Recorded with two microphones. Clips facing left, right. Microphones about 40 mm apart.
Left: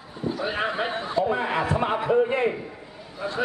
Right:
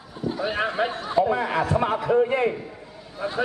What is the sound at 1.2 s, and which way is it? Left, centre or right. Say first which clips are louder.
Speech: right 1 dB; left.